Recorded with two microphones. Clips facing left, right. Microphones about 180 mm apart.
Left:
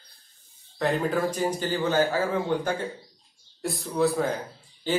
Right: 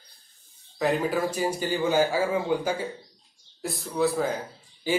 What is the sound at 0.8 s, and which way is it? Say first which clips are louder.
Speech: even; 5° right (ahead or behind).